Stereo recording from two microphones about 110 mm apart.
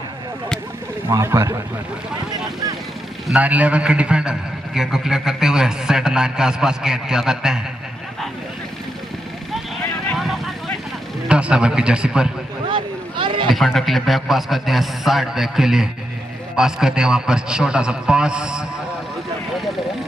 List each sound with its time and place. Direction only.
1.0 s speech: 25° right (ahead or behind)
3.3 s a man's voice: 15° right (ahead or behind)
10.1 s vehicle: centre (ahead or behind)
11.2 s a man's voice: 10° right (ahead or behind)
12.6 s a sound: 50° right (ahead or behind)
13.5 s a man's voice: centre (ahead or behind)